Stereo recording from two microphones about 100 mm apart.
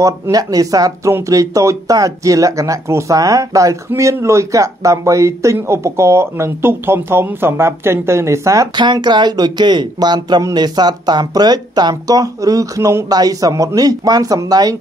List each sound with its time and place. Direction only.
0.0 s speech: 40° right (ahead or behind)
8.7 s speech: 50° right (ahead or behind)